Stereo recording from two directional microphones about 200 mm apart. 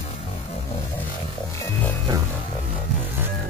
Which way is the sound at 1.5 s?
15° left (ahead or behind).